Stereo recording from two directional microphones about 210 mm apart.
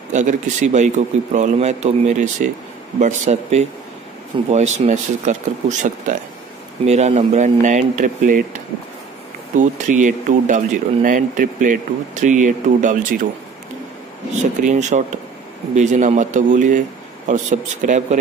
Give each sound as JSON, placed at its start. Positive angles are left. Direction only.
{"t": 0.1, "sound": "speech", "side_deg": -35}
{"t": 14.3, "sound": "speech", "side_deg": -35}